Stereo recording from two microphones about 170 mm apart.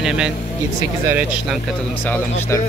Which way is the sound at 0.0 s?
5° right (ahead or behind).